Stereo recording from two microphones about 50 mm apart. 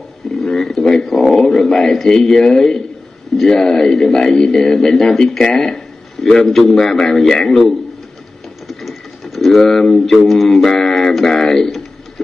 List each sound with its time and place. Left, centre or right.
0.4 s a man's voice: centre
8.6 s a sound: centre
11.1 s a man's voice: centre